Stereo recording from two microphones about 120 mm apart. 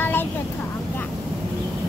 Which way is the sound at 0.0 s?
15° left (ahead or behind).